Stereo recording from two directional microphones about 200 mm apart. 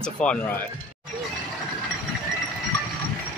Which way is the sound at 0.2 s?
35° left (ahead or behind).